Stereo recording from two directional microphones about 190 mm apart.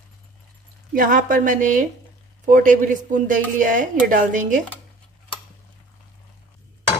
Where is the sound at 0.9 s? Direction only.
45° right (ahead or behind).